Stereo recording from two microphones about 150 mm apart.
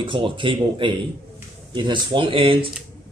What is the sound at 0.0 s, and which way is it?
Speech, 35° right (ahead or behind).